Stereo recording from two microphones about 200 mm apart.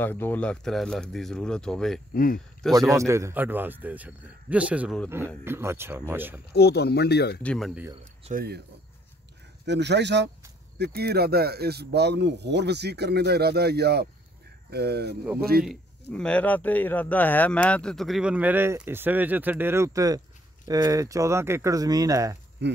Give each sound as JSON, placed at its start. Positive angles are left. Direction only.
{"t": 0.0, "sound": "speech", "side_deg": 10}
{"t": 2.1, "sound": "speech", "side_deg": 45}
{"t": 2.6, "sound": "speech", "side_deg": 5}
{"t": 3.0, "sound": "speech", "side_deg": -15}
{"t": 6.5, "sound": "speech", "side_deg": 55}
{"t": 7.4, "sound": "speech", "side_deg": 0}
{"t": 8.3, "sound": "speech", "side_deg": -50}
{"t": 9.7, "sound": "speech", "side_deg": -60}
{"t": 15.6, "sound": "speech", "side_deg": 0}
{"t": 22.6, "sound": "speech", "side_deg": -60}